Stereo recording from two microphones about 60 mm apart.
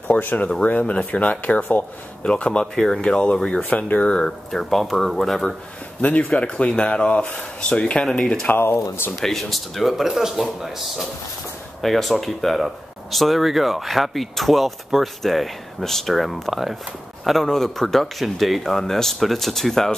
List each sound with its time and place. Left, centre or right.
0.2 s speech: left; by 3.0 s centre
3.0 s speech: centre
5.9 s speech: left
8.5 s speech: left
9.1 s speech: centre